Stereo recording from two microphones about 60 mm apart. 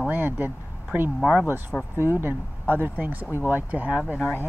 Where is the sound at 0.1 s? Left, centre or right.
Right.